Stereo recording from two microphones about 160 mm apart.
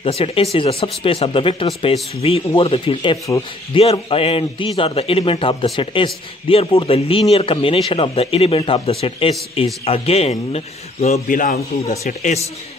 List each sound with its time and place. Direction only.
0.0 s speech: 35° left (ahead or behind)
11.2 s a man's voice: 55° left (ahead or behind)